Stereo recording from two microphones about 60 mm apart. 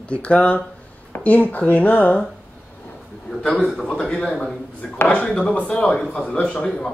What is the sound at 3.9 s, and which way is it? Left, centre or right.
Speech, centre.